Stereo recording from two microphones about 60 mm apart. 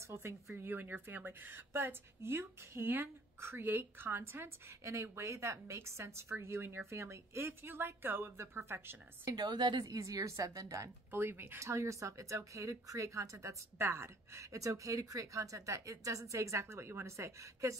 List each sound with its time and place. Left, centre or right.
0.1 s speech: right
0.6 s a woman's voice: right
9.3 s a woman's voice: right
11.1 s a woman's voice: right
11.6 s a woman's voice: right
13.7 s a woman's voice: right